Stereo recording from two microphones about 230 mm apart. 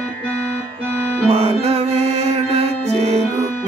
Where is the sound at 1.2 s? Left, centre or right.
Right.